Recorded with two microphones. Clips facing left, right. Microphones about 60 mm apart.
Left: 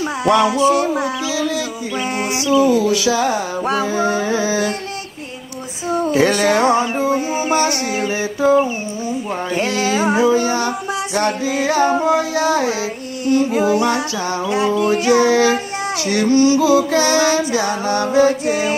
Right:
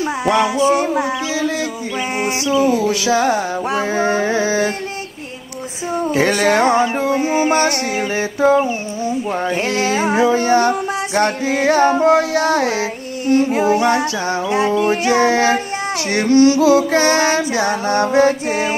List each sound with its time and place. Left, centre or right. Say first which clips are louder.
0.2 s music: left 2 dB; right
2.6 s music: left 1 dB; right
6.1 s female singing: right 1 dB; right
7.4 s female singing: right 1 dB; right
9.5 s music: left 2 dB; right
10.3 s female singing: right 3 dB; right
13.6 s music: right 1 dB; right
14.8 s female singing: left 3 dB; right
16.1 s female singing: right 2 dB; right